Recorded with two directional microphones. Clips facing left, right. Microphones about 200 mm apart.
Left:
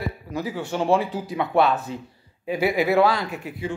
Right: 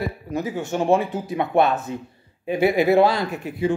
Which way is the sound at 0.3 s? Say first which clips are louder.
Right 2 dB; 20° right (ahead or behind).